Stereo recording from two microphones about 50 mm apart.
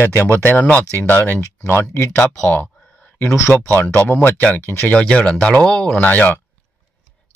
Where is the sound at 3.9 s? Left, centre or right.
Left.